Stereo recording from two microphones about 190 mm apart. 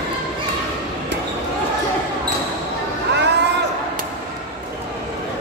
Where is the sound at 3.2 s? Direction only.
65° right (ahead or behind).